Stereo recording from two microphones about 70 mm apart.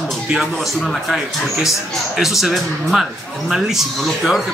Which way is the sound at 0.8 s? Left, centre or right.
Centre.